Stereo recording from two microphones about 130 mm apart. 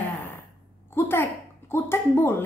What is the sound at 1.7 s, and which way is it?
Speech, 20° left (ahead or behind).